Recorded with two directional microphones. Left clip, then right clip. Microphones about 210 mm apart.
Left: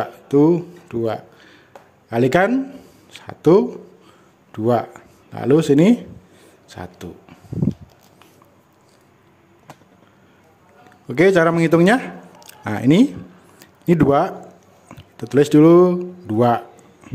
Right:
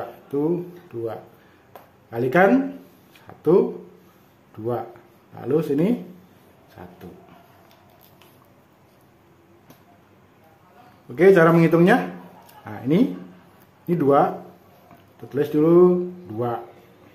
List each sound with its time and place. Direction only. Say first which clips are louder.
0.3 s speech: left 9 dB; 45° left (ahead or behind)
11.1 s speech: even; 40° left (ahead or behind)